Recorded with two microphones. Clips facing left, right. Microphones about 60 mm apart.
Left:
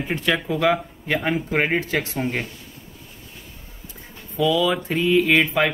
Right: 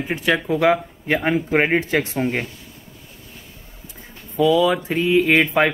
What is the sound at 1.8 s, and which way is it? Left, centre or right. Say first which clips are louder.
Speech: right 4 dB; right.